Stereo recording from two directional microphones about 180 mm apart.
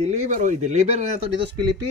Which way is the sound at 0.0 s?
40° right (ahead or behind).